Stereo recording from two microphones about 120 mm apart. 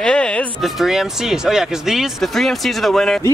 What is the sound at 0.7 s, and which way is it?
Speech, centre (ahead or behind).